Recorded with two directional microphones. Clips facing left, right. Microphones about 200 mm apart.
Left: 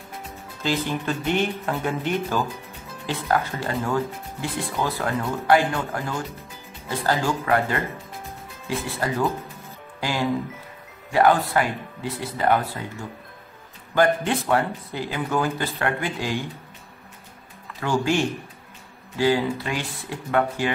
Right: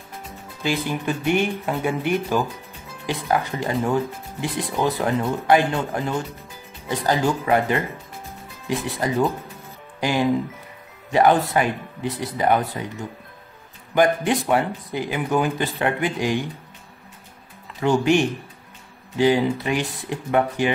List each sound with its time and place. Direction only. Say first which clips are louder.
0.8 s speech: right 2 dB; 15° right (ahead or behind)
17.7 s speech: right 4 dB; 20° right (ahead or behind)